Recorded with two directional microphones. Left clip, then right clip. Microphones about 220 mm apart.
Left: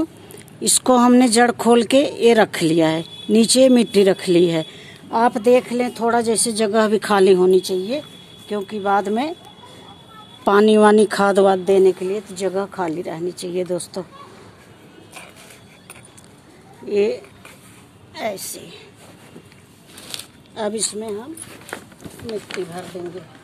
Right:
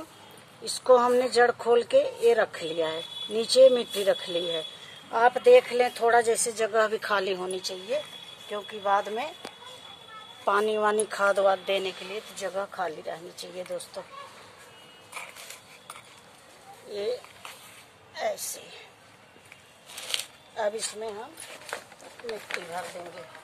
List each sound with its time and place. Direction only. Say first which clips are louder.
0.8 s speech: left 5 dB; 45° left (ahead or behind)
10.4 s speech: left 11 dB; 45° left (ahead or behind)
16.9 s a woman's voice: left 12 dB; 40° left (ahead or behind)
20.1 s a sound: right 1 dB; centre (ahead or behind)
20.5 s speech: left 6 dB; 35° left (ahead or behind)